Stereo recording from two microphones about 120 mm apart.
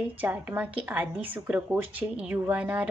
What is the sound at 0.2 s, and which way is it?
A woman's voice, 15° right (ahead or behind).